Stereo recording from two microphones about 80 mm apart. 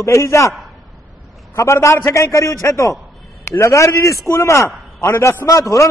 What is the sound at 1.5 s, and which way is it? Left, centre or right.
A man's voice, left.